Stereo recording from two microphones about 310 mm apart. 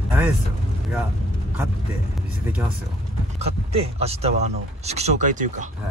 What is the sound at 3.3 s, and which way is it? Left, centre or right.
Speech, centre.